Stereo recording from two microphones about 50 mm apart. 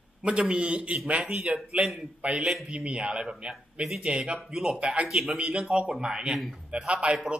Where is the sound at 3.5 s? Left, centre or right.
Centre.